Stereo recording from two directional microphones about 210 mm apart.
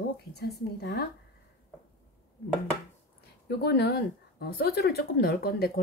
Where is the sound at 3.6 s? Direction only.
50° left (ahead or behind).